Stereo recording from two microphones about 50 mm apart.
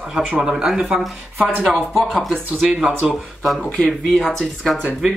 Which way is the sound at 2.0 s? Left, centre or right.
Centre.